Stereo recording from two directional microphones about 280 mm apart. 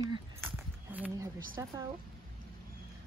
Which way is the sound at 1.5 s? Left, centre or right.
Centre.